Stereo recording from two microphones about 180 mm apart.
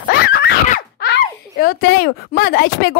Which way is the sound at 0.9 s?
65° left (ahead or behind).